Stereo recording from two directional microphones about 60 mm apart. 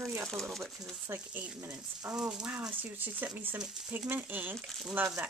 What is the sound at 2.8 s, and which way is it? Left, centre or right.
Speech, right.